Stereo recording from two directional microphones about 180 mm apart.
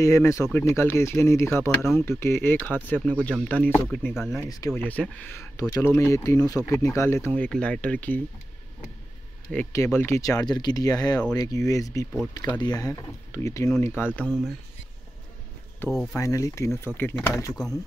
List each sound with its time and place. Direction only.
0.0 s speech: 15° left (ahead or behind); by 4.4 s centre (ahead or behind)
4.4 s speech: 20° left (ahead or behind)
9.5 s speech: 10° left (ahead or behind)
15.9 s speech: 5° left (ahead or behind)
16.2 s speech: 15° left (ahead or behind)